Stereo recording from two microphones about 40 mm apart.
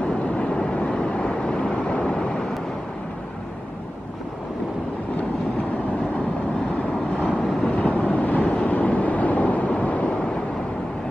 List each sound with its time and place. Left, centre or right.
0.4 s vehicle: left
7.6 s vehicle: left